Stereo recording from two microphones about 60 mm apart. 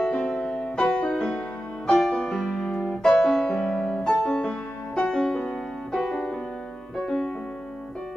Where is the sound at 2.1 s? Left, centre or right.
Centre.